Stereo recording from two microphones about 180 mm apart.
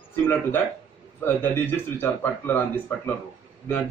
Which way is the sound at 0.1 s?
10° left (ahead or behind).